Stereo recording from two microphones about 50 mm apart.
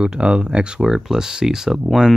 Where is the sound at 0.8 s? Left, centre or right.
Centre.